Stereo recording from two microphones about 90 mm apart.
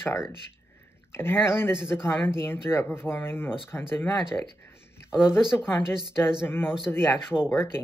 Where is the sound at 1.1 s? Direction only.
25° left (ahead or behind).